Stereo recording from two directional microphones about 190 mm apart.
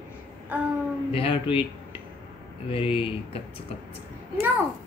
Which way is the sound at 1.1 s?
30° left (ahead or behind).